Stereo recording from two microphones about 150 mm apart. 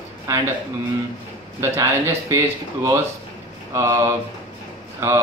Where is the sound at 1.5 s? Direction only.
20° right (ahead or behind).